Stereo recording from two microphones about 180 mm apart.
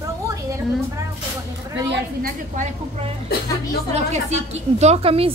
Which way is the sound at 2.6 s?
45° right (ahead or behind).